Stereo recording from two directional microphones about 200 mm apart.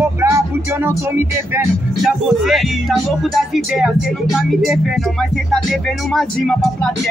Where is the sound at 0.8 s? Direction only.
10° right (ahead or behind).